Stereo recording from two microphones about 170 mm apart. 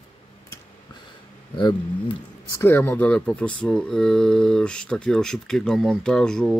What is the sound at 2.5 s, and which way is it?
Speech, 15° left (ahead or behind).